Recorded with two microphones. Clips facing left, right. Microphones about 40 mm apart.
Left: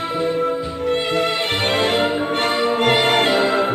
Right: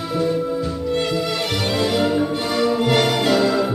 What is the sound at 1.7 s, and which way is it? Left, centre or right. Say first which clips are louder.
Music: left 1 dB; left.